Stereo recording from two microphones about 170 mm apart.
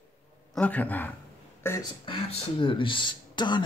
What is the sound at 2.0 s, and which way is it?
Speech, 30° left (ahead or behind).